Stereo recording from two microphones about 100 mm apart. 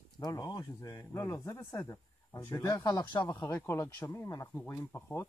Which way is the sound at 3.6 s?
30° left (ahead or behind).